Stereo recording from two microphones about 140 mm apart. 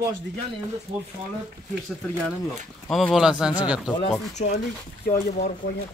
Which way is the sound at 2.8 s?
5° left (ahead or behind).